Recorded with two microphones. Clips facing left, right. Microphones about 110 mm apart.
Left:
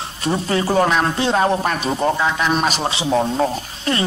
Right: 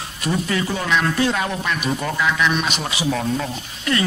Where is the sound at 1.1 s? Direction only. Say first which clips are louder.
Left 4 dB; 30° left (ahead or behind).